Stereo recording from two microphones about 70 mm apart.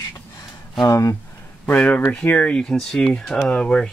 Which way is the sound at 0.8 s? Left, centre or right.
Left.